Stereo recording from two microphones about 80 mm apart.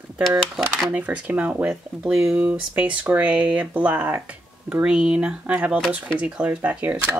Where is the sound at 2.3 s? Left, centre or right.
Centre.